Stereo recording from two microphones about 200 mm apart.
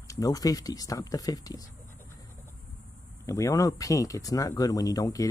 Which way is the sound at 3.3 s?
15° left (ahead or behind).